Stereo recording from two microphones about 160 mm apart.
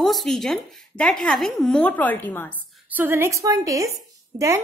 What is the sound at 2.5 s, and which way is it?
Speech, 10° right (ahead or behind).